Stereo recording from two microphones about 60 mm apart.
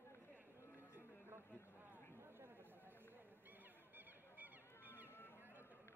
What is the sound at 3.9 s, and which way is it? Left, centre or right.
Honk, right.